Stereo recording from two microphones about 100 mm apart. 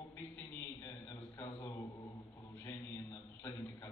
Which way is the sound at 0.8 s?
30° left (ahead or behind).